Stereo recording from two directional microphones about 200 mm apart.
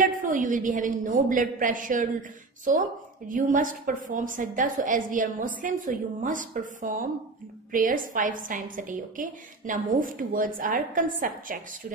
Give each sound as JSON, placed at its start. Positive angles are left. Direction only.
{"t": 0.0, "sound": "a woman's voice", "side_deg": -40}